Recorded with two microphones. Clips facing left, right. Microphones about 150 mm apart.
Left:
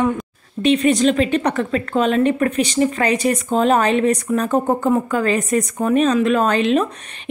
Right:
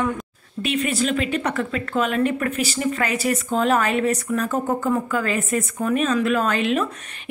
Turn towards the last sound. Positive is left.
turn(degrees=30)  # may be behind; listen again after turning